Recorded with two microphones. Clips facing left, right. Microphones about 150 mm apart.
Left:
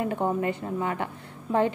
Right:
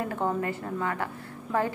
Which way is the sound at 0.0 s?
20° left (ahead or behind).